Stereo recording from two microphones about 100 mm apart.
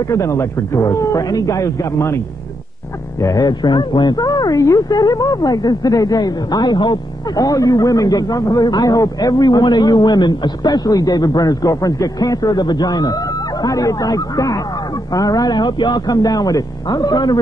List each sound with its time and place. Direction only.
0.0 s speech: 30° left (ahead or behind)
3.2 s speech: 30° left (ahead or behind)
3.4 s speech: 45° left (ahead or behind)